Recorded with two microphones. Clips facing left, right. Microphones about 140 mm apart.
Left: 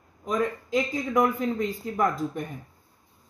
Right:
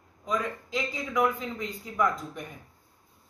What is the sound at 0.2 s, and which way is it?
A man's voice, 45° left (ahead or behind).